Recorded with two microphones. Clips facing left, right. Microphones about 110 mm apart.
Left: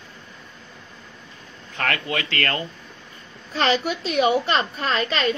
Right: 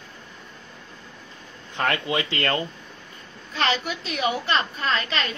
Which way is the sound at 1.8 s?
25° right (ahead or behind).